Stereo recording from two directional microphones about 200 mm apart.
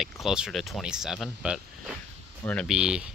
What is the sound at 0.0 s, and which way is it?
Speech, 5° right (ahead or behind).